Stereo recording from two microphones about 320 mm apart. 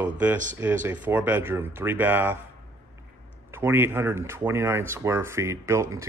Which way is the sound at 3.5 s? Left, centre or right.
Centre.